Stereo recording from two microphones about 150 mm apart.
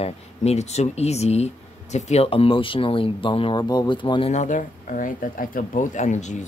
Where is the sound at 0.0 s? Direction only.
45° left (ahead or behind).